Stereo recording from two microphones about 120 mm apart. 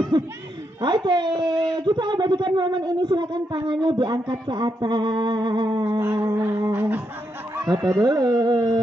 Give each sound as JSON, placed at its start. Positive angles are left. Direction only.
{"t": 0.7, "sound": "speech", "side_deg": -40}
{"t": 6.1, "sound": "a sound", "side_deg": -20}
{"t": 7.5, "sound": "speech", "side_deg": -30}